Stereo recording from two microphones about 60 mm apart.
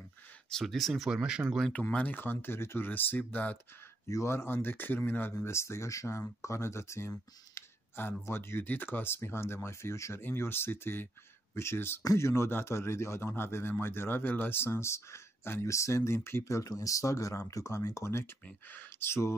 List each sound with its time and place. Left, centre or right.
0.5 s speech: centre
1.7 s speech: left
4.1 s speech: left
5.4 s speech: left
7.5 s a sound: left
8.6 s speech: left
10.2 s speech: left
18.7 s speech: left